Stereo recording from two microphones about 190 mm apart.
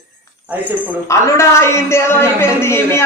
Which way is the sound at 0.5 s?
10° right (ahead or behind).